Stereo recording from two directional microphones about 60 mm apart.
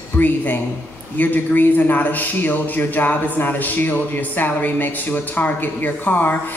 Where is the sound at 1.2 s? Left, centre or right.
Left.